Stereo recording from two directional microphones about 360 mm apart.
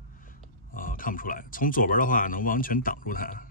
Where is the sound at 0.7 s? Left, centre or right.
Left.